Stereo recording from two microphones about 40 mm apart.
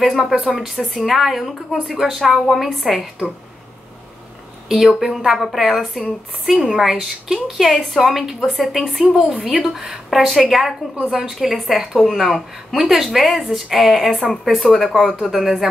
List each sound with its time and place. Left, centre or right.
0.2 s speech: centre
4.6 s a woman's voice: centre
8.5 s speech: centre
9.0 s a woman's voice: centre